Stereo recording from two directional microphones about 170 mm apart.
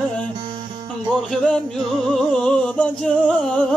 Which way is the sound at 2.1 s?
5° left (ahead or behind).